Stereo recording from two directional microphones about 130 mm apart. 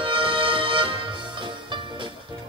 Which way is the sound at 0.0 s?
40° right (ahead or behind).